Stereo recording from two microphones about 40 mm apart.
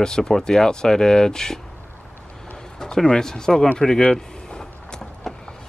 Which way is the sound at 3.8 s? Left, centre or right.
Centre.